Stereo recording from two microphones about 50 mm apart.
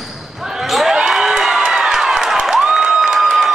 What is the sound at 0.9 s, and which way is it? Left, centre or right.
Crowd, centre.